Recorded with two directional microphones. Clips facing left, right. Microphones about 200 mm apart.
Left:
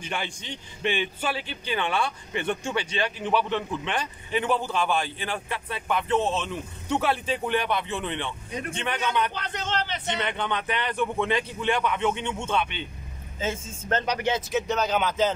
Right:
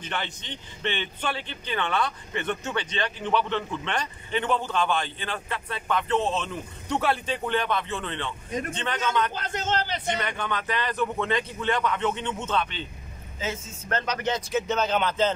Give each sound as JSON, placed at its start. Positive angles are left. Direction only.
{"t": 0.0, "sound": "a man's voice", "side_deg": 10}
{"t": 7.4, "sound": "a man's voice", "side_deg": 10}
{"t": 8.5, "sound": "a man's voice", "side_deg": -45}
{"t": 8.7, "sound": "a man's voice", "side_deg": 10}
{"t": 9.3, "sound": "speech", "side_deg": -45}
{"t": 10.1, "sound": "a man's voice", "side_deg": 20}
{"t": 13.7, "sound": "speech", "side_deg": 20}